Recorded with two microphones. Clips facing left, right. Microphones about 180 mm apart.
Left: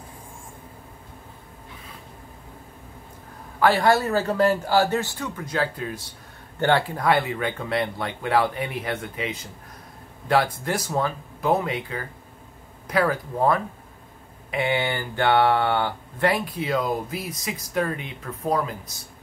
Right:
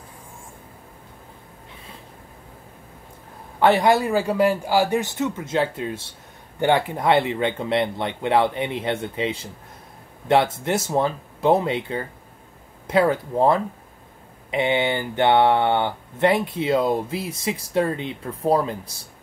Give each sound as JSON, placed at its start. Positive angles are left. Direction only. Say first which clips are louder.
{"t": 3.5, "sound": "speech", "louder": "right 2 dB", "side_deg": -20}